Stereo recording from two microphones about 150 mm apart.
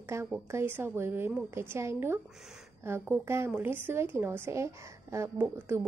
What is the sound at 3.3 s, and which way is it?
A woman's voice, 15° right (ahead or behind).